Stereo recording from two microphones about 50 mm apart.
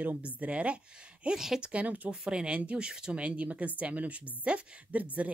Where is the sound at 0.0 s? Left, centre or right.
Right.